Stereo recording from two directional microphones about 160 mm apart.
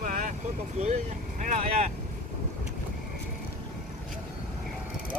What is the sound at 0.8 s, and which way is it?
Speech, 50° right (ahead or behind).